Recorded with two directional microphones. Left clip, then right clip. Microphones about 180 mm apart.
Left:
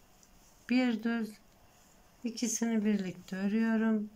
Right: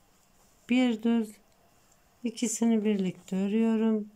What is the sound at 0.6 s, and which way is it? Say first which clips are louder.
Speech: right 4 dB; 15° right (ahead or behind).